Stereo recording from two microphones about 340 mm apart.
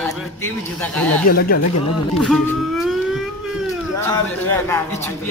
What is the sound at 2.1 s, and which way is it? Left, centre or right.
Music, centre.